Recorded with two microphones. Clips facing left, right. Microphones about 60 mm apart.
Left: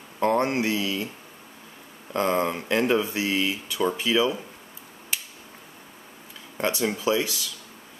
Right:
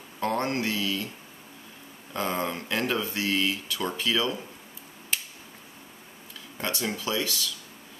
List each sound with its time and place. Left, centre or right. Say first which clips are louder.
0.2 s speech: left 5 dB; left
2.1 s speech: left 5 dB; centre
5.1 s a sound: even; centre
6.6 s speech: left 6 dB; centre